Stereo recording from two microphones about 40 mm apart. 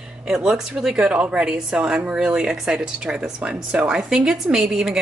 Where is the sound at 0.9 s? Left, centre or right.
Right.